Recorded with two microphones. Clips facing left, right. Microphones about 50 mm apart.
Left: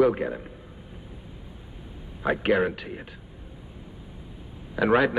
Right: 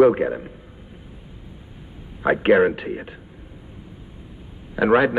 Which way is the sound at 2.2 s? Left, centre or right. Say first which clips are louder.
Right 7 dB; centre.